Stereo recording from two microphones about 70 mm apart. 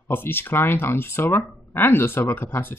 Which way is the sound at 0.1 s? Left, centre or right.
Left.